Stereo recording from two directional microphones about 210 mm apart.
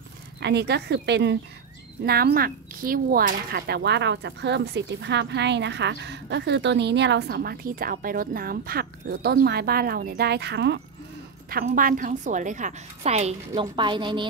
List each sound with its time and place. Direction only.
0.4 s speech: 55° right (ahead or behind)
11.4 s a woman's voice: 40° right (ahead or behind); by 14.2 s 20° right (ahead or behind)